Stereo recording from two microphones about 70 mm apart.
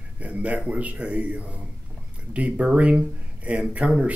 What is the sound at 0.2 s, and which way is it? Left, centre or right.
A man's voice, right.